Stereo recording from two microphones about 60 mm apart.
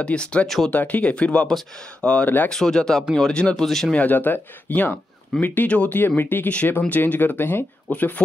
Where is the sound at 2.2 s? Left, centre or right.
Left.